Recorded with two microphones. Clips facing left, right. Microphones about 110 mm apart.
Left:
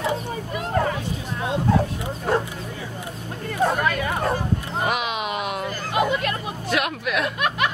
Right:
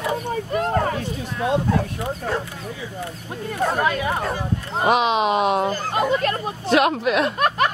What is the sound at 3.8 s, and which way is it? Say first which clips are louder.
Speech: right 2 dB; 25° right (ahead or behind).